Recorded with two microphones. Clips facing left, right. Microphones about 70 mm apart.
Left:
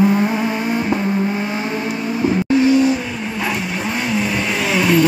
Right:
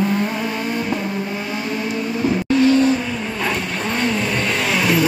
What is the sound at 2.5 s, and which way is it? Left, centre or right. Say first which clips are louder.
Vehicle: even; centre.